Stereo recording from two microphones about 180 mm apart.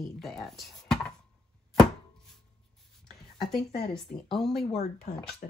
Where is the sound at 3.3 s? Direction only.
Centre (ahead or behind).